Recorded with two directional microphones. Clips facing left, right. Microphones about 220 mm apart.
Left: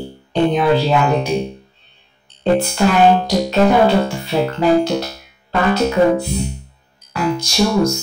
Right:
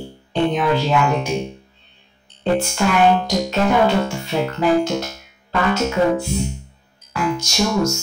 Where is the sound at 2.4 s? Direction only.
35° left (ahead or behind).